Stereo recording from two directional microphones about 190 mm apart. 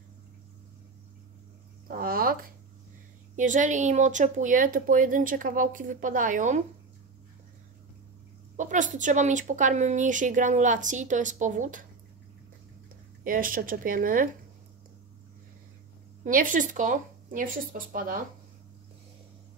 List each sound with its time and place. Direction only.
1.9 s speech: 50° right (ahead or behind)
3.3 s speech: 40° right (ahead or behind)
8.5 s speech: 40° right (ahead or behind)
13.2 s speech: 45° right (ahead or behind)
16.3 s speech: 45° right (ahead or behind)